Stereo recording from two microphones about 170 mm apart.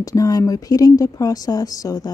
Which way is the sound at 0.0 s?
20° left (ahead or behind).